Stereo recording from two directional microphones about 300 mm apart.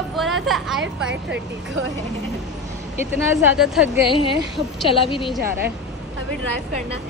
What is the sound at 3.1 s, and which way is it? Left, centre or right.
A woman's voice, centre.